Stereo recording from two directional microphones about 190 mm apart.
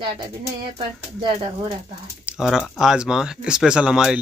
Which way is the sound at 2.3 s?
Centre (ahead or behind).